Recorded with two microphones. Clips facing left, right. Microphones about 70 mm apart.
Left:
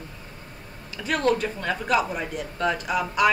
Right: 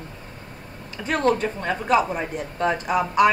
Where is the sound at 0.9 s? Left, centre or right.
Right.